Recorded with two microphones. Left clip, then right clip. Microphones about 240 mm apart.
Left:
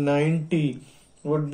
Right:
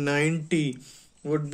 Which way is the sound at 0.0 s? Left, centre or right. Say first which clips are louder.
Left 2 dB; right.